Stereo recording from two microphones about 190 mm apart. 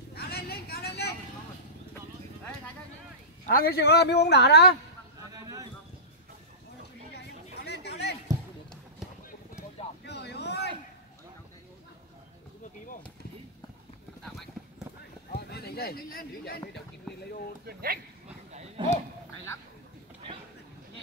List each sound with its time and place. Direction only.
0.1 s vehicle: 55° left (ahead or behind)
3.4 s speech: 50° left (ahead or behind)
5.3 s a sound: 20° right (ahead or behind)
7.2 s a sound: 60° left (ahead or behind)
10.0 s vehicle: 60° left (ahead or behind)
15.3 s speech: 55° left (ahead or behind)
17.6 s speech: 55° right (ahead or behind)
18.5 s dog: 35° right (ahead or behind)